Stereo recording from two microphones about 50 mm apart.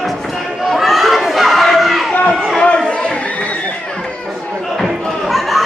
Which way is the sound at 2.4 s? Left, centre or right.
Centre.